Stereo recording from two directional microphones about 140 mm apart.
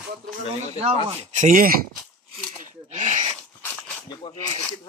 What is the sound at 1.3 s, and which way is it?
Speech, 65° right (ahead or behind).